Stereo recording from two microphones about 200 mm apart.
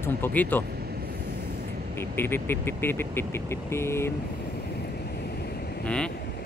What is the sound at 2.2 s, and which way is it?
Speech, 10° left (ahead or behind).